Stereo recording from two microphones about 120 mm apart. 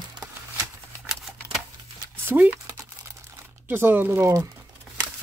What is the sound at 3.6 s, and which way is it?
Speech, 15° right (ahead or behind).